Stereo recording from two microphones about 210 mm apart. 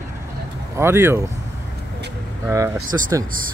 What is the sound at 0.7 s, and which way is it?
Speech, 10° right (ahead or behind).